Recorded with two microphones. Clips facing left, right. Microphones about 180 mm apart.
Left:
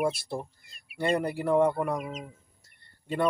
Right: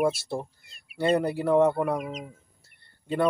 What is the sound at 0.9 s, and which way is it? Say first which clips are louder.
Speech: right 3 dB; 5° right (ahead or behind).